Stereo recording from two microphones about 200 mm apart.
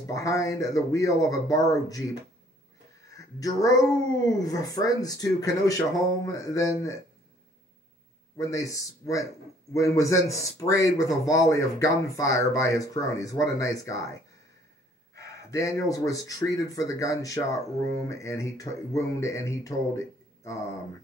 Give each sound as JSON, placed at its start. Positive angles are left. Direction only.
{"t": 0.0, "sound": "speech", "side_deg": 15}
{"t": 3.1, "sound": "speech", "side_deg": 15}
{"t": 8.4, "sound": "speech", "side_deg": 15}
{"t": 15.1, "sound": "speech", "side_deg": 15}